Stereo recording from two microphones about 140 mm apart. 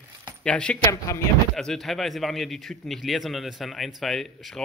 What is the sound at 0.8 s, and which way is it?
Speech, 20° left (ahead or behind).